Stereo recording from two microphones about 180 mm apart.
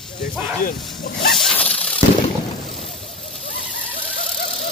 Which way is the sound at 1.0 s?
65° left (ahead or behind).